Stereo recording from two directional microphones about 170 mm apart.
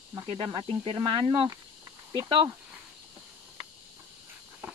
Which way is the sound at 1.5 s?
20° right (ahead or behind).